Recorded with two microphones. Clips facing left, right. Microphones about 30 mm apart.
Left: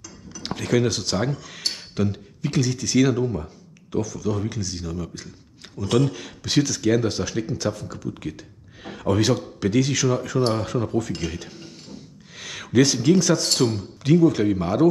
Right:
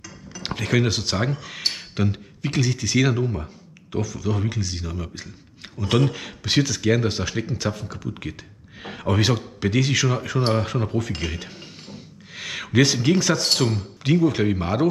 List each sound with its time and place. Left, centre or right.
0.0 s speech: centre